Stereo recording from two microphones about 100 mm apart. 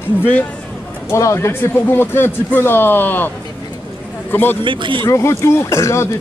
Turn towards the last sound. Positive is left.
turn(degrees=30)  # may be behind; listen again after turning